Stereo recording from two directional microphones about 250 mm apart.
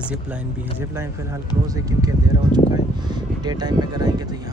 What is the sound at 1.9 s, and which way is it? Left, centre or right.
Speech, centre.